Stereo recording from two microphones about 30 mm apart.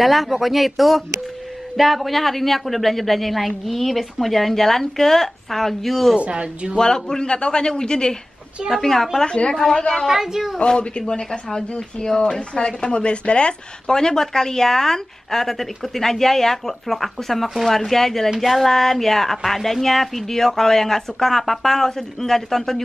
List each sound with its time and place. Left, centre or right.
0.0 s speech: centre
6.4 s speech: right
6.8 s a man's voice: left
8.7 s speech: centre
9.2 s a man's voice: left
10.0 s a woman's voice: centre
10.6 s a man's voice: left
13.9 s speech: centre
18.4 s speech: centre